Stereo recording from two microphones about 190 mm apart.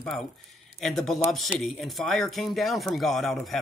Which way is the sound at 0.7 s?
Centre (ahead or behind).